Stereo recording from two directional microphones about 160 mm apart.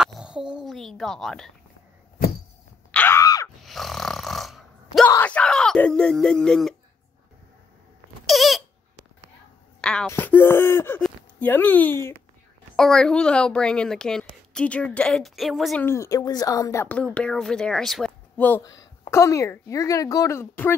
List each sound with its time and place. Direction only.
0.0 s a sound: 5° right (ahead or behind)
2.9 s groan: 10° left (ahead or behind)
3.6 s snoring: centre (ahead or behind)
5.0 s a sound: 10° left (ahead or behind)
8.3 s a sound: centre (ahead or behind)
9.8 s wail: 5° left (ahead or behind)
10.0 s speech: 10° left (ahead or behind)
15.8 s a woman's voice: 20° left (ahead or behind)
16.8 s speech: 10° left (ahead or behind)
18.8 s a woman's voice: 20° left (ahead or behind)